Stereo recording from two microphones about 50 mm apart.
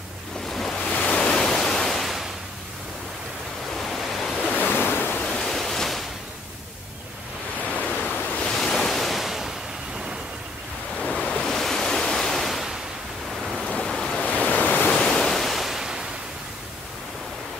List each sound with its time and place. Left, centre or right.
0.5 s waves: centre
0.9 s ocean: left; by 2.2 s centre
3.7 s waves: centre
4.6 s waves: left
5.3 s waves: centre
8.0 s waves: left
8.4 s waves: centre
11.0 s waves: centre
13.8 s waves: centre
14.2 s waves: left; by 16.0 s centre